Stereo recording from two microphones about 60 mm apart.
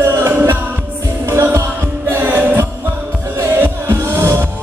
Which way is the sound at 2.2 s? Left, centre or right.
Right.